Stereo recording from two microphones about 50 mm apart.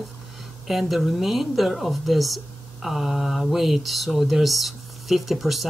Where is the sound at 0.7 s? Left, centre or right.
Centre.